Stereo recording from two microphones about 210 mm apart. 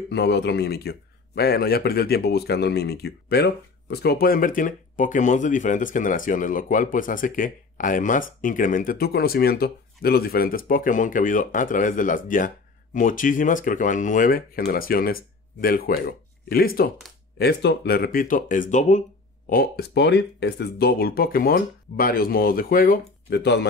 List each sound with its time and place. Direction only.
0.1 s speech: 55° left (ahead or behind); by 19.0 s 35° left (ahead or behind)
19.5 s speech: 45° left (ahead or behind)